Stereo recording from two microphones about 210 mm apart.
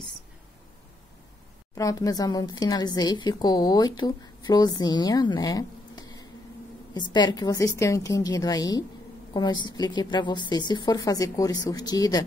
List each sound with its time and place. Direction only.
1.8 s a woman's voice: 15° left (ahead or behind)